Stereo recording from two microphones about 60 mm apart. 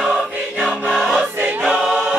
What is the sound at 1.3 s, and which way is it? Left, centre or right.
Choir, right.